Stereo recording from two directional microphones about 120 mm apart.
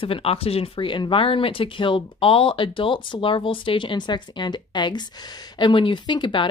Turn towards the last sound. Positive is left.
turn(degrees=40)  # may be behind; listen again after turning